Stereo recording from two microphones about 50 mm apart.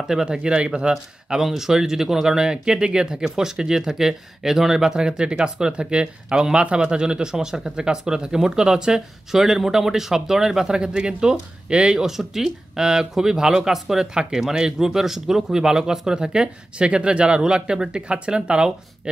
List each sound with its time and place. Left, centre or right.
0.1 s speech: centre
1.4 s speech: centre
12.2 s speech: centre